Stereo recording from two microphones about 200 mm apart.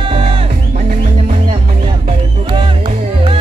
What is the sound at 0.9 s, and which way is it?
Music, 35° right (ahead or behind).